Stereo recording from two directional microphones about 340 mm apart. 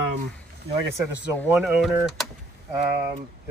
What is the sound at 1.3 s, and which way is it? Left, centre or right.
Speech, centre.